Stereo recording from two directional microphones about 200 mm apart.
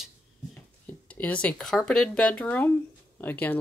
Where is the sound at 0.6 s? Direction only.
10° left (ahead or behind).